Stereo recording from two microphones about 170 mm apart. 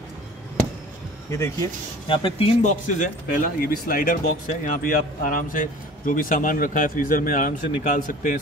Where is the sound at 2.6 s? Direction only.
50° left (ahead or behind).